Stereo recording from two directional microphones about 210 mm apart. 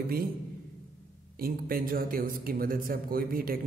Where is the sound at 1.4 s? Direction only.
45° right (ahead or behind).